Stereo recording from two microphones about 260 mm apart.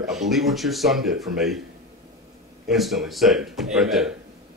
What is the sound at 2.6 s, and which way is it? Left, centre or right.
Speech, centre.